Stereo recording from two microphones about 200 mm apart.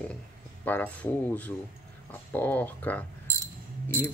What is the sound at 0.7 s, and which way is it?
Speech, 10° left (ahead or behind).